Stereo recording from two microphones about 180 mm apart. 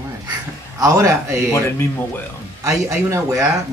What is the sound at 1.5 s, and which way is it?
Speech, 15° left (ahead or behind).